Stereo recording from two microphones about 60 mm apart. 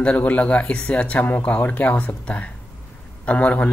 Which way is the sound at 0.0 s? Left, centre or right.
Left.